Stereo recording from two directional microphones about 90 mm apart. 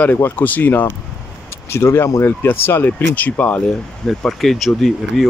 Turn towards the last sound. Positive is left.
turn(degrees=0)  # may be behind; listen again after turning